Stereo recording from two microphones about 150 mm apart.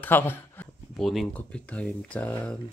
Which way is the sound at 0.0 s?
15° left (ahead or behind).